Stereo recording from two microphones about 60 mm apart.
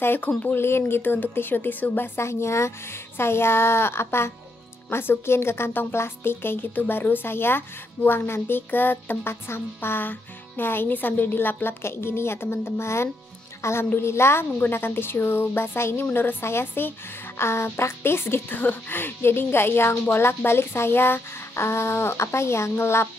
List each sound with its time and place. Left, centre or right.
0.0 s speech: left
2.1 s a woman's voice: left